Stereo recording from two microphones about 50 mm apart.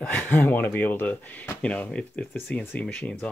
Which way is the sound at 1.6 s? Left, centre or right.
Left.